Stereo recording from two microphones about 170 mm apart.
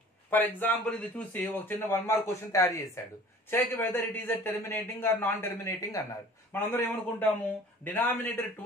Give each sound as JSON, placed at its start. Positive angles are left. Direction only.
{"t": 0.3, "sound": "a man's voice", "side_deg": 10}